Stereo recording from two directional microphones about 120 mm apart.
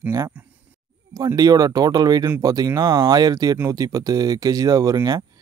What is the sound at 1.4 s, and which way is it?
Speech, 30° right (ahead or behind).